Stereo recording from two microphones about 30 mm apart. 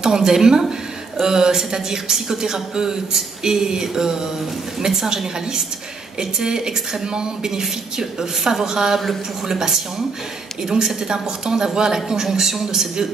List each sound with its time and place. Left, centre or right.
0.0 s a man's voice: right
7.6 s a woman's voice: centre